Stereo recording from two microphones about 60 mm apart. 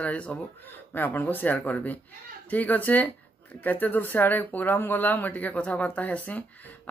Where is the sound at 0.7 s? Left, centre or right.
Left.